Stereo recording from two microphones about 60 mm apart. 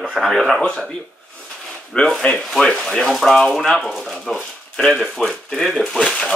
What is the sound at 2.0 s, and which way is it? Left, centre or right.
Speech, centre.